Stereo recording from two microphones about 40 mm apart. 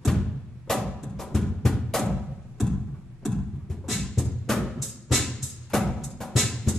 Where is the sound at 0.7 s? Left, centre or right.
Centre.